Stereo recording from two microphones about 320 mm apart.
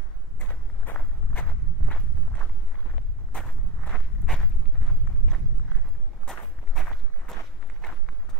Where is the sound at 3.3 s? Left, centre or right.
Centre.